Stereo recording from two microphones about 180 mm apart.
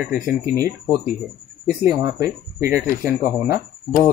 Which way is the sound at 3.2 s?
50° left (ahead or behind).